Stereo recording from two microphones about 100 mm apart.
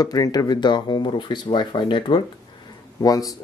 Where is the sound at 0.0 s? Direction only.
40° left (ahead or behind); by 2.2 s 55° left (ahead or behind).